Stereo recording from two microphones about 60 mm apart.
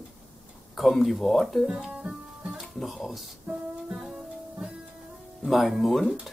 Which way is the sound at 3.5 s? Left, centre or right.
Centre.